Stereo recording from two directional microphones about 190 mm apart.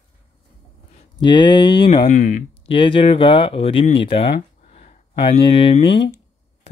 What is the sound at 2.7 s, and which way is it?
Speech, 25° left (ahead or behind).